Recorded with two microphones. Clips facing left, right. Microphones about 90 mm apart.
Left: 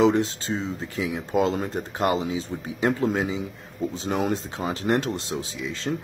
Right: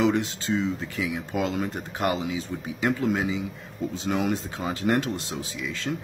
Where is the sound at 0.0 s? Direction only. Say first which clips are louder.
Left 3 dB; 30° left (ahead or behind).